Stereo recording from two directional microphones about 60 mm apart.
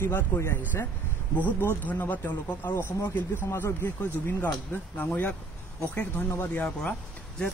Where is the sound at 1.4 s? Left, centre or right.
Left.